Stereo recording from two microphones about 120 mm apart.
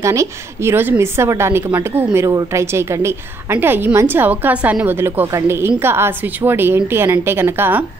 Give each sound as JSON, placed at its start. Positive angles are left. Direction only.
{"t": 0.0, "sound": "a woman's voice", "side_deg": -25}